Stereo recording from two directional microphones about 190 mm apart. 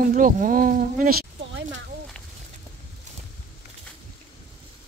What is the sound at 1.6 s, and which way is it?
Speech, 75° right (ahead or behind).